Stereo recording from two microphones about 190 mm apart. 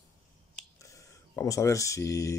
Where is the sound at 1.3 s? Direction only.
15° left (ahead or behind).